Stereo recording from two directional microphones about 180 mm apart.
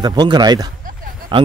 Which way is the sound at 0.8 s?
50° right (ahead or behind).